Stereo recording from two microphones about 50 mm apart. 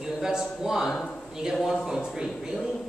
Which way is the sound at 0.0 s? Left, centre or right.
Centre.